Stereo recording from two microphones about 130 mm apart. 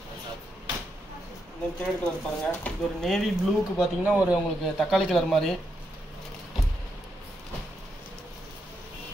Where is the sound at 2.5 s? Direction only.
5° left (ahead or behind).